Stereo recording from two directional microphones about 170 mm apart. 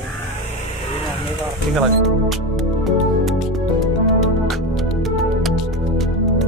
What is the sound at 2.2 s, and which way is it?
Music, centre (ahead or behind).